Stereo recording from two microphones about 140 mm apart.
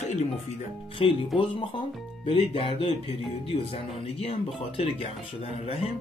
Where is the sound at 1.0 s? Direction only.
45° left (ahead or behind).